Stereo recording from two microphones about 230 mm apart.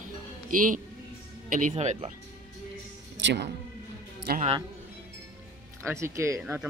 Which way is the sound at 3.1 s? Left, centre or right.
Right.